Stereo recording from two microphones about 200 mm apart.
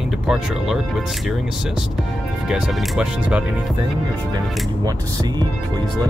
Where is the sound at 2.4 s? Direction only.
5° right (ahead or behind).